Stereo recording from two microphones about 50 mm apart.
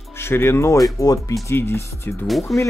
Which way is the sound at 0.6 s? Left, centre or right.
Left.